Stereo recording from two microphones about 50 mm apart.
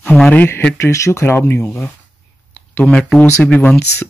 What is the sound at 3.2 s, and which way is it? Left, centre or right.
Speech, left.